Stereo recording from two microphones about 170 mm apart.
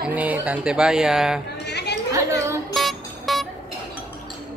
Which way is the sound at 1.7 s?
80° left.